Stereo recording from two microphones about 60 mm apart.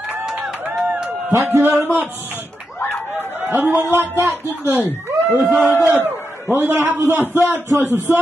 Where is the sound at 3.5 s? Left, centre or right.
Right.